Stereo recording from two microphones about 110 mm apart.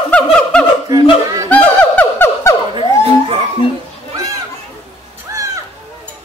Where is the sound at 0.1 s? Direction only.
10° left (ahead or behind).